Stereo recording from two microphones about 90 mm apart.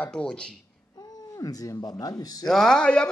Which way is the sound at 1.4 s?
45° left (ahead or behind).